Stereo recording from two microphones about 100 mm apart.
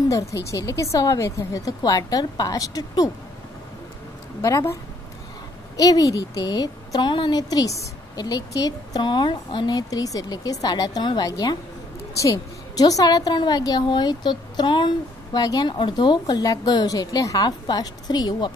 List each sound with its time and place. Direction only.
0.1 s a woman's voice: 30° left (ahead or behind)
4.4 s a woman's voice: 35° left (ahead or behind)
5.8 s a woman's voice: 40° left (ahead or behind)